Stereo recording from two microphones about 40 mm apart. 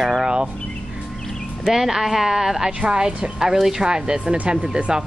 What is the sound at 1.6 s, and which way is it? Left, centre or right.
Speech, centre.